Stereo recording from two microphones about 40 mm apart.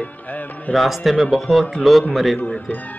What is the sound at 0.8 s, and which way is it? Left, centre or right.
Speech, centre.